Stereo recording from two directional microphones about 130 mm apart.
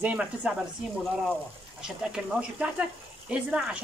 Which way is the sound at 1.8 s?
5° right (ahead or behind).